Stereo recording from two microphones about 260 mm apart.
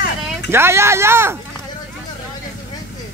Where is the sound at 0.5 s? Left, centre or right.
Centre.